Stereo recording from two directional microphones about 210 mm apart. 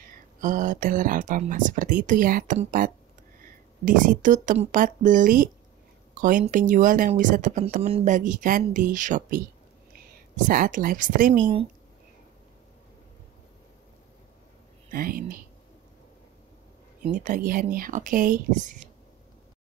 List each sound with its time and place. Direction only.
0.4 s a woman's voice: 40° right (ahead or behind)
14.9 s speech: 45° right (ahead or behind)
17.1 s speech: 40° right (ahead or behind)